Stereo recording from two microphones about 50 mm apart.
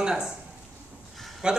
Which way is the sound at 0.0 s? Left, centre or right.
Centre.